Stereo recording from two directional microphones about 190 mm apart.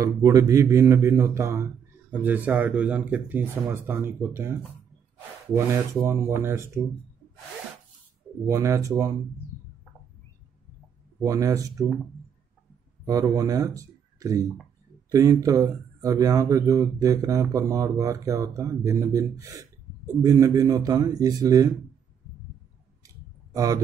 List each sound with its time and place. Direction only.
0.0 s speech: 15° right (ahead or behind)
8.5 s speech: 15° right (ahead or behind)
11.2 s speech: 15° right (ahead or behind)
13.0 s speech: 20° right (ahead or behind)
23.0 s a sound: 15° right (ahead or behind)